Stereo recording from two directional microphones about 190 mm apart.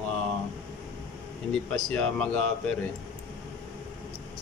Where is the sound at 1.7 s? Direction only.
5° left (ahead or behind).